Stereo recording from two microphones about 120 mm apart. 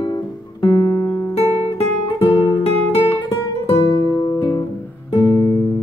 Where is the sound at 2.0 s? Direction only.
45° left (ahead or behind).